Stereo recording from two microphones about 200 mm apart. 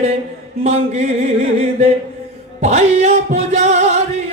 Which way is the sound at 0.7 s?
35° right (ahead or behind).